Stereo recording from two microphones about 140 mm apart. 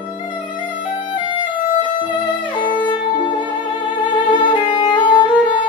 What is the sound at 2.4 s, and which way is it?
Violin, 35° left (ahead or behind).